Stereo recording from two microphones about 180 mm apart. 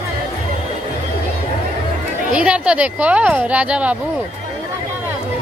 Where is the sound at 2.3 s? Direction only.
5° right (ahead or behind).